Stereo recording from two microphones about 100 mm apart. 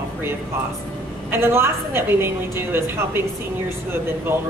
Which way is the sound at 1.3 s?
25° right (ahead or behind).